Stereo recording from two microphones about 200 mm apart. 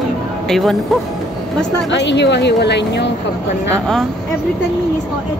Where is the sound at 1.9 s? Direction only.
60° left (ahead or behind).